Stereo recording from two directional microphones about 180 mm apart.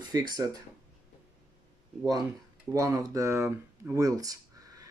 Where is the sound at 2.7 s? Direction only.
15° right (ahead or behind).